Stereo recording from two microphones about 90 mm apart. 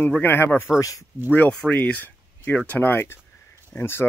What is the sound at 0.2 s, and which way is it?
Speech, 25° left (ahead or behind).